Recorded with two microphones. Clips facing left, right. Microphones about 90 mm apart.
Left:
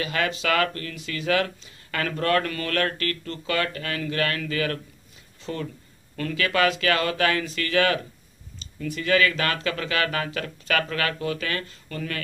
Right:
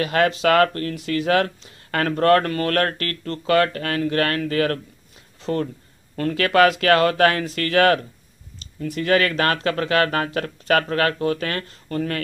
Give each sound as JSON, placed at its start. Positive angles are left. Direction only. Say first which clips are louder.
{"t": 0.0, "sound": "speech", "louder": "right 7 dB", "side_deg": -50}